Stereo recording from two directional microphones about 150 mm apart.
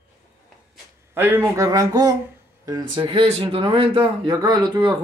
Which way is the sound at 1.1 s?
15° right (ahead or behind).